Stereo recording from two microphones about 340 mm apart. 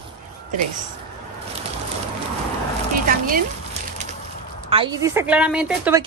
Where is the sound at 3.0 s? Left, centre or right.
Right.